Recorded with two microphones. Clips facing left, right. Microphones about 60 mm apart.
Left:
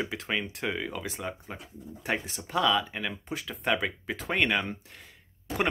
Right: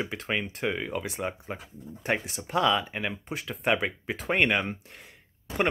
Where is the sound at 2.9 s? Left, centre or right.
Right.